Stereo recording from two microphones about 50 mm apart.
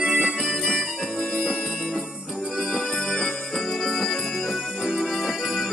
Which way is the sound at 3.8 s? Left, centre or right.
Centre.